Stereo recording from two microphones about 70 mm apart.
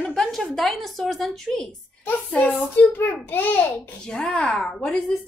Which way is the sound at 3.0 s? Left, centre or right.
Left.